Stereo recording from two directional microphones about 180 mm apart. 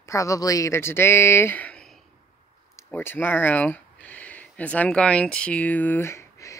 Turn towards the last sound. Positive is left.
turn(degrees=15)  # may be behind; listen again after turning